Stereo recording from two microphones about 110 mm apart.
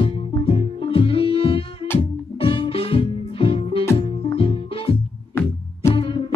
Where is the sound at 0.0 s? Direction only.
55° left (ahead or behind).